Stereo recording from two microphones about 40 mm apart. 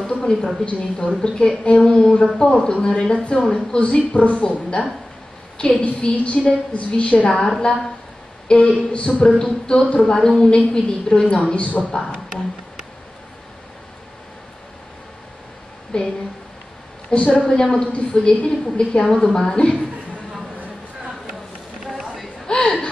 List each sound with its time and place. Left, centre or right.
0.0 s a woman's voice: centre
3.7 s a woman's voice: left
7.4 s a woman's voice: centre
8.5 s a woman's voice: left
9.4 s a woman's voice: centre
9.8 s a woman's voice: left
10.1 s a woman's voice: centre
15.9 s a woman's voice: left
17.1 s a woman's voice: left
17.5 s a woman's voice: centre
22.5 s chuckle: left